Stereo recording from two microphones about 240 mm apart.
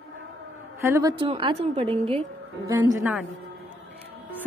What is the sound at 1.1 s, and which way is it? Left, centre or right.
A woman's voice, right.